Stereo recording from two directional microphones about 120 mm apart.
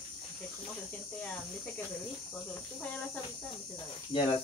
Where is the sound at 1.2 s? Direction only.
10° left (ahead or behind).